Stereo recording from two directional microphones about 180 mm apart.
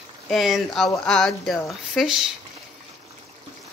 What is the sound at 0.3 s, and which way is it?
Speech, centre (ahead or behind).